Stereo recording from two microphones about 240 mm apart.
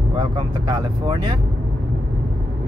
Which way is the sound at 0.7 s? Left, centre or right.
Centre.